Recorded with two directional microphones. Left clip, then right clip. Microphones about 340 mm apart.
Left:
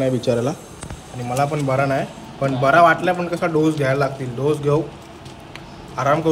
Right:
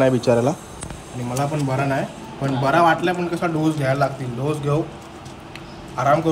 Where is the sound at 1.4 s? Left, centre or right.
Centre.